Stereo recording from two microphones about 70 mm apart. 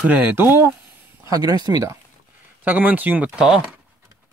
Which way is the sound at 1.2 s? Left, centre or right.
Right.